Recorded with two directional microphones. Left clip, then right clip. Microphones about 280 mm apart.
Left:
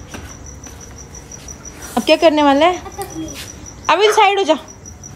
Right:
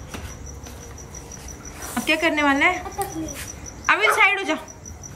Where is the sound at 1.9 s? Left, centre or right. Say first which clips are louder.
Left 9 dB; centre.